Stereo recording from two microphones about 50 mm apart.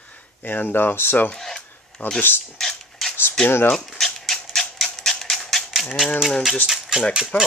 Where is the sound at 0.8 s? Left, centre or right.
Left.